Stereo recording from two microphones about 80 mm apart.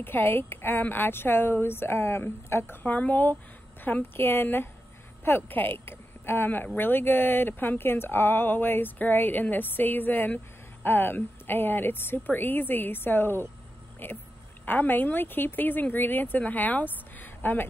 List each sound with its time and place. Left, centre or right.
0.0 s a woman's voice: left